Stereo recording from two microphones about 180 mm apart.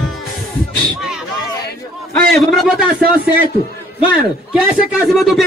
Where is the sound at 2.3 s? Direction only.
Centre (ahead or behind).